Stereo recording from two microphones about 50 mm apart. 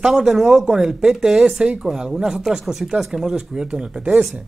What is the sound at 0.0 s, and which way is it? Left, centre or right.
A man's voice, centre.